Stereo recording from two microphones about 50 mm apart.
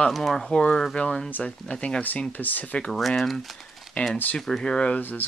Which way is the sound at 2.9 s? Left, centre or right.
Centre.